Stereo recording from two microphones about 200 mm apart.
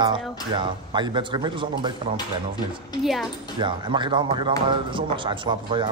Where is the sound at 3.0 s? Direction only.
Centre (ahead or behind).